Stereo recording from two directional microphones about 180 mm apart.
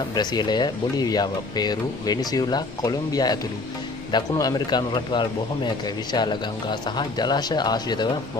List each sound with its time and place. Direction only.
0.1 s speech: 25° left (ahead or behind)